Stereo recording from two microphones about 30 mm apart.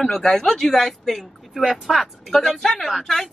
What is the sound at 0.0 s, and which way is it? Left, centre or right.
Speech, centre.